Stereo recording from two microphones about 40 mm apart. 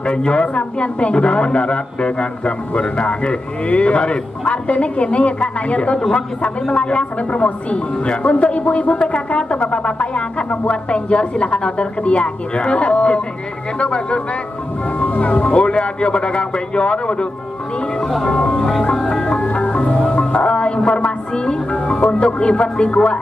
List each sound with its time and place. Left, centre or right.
0.0 s a man's voice: left
15.0 s a man's voice: left
18.6 s music: centre
18.9 s music: left
19.2 s music: left
21.9 s a man's voice: left